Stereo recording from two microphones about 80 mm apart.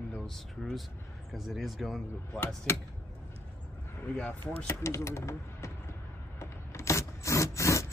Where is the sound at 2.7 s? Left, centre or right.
Left.